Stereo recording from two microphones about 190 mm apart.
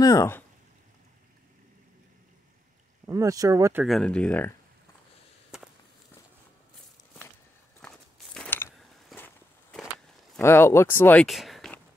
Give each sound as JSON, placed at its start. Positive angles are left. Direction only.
{"t": 0.0, "sound": "speech", "side_deg": 15}
{"t": 3.1, "sound": "speech", "side_deg": -15}
{"t": 3.8, "sound": "speech", "side_deg": 0}
{"t": 7.8, "sound": "walk", "side_deg": 5}
{"t": 10.4, "sound": "speech", "side_deg": 15}
{"t": 11.2, "sound": "a sound", "side_deg": 0}